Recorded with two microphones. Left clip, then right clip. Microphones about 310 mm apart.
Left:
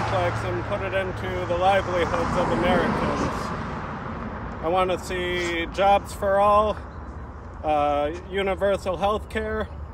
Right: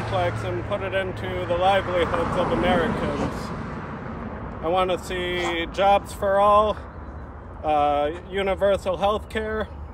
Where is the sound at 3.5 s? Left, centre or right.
Centre.